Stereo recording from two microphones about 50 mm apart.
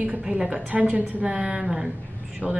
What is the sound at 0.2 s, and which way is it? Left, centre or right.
Speech, centre.